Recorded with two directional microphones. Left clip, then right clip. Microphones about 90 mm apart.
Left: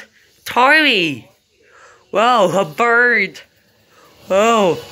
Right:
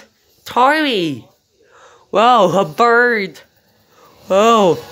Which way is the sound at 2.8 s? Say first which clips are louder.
Even; 60° right (ahead or behind).